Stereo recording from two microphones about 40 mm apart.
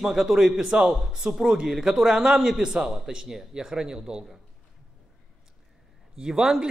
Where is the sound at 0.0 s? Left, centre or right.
Centre.